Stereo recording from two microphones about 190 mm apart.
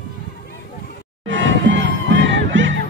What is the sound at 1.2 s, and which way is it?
Crowd, 75° right (ahead or behind).